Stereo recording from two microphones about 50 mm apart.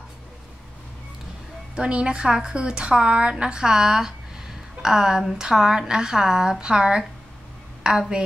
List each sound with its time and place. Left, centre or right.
1.8 s a woman's voice: right